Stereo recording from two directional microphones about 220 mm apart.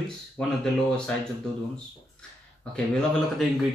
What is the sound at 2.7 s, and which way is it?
Speech, 5° left (ahead or behind).